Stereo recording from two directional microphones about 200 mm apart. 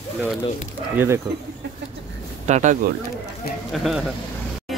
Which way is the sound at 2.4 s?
35° right (ahead or behind).